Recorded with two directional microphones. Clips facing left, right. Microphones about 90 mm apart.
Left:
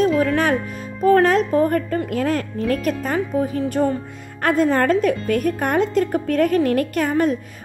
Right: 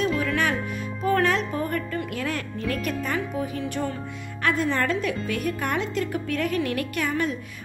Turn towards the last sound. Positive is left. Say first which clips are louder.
# left 7 dB
turn(degrees=40)  # may be behind; listen again after turning